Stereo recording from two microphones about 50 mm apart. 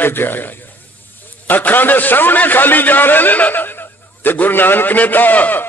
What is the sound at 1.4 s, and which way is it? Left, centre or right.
A man's voice, left.